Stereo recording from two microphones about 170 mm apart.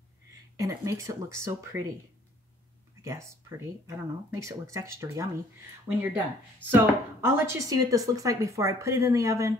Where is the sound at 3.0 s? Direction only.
15° right (ahead or behind).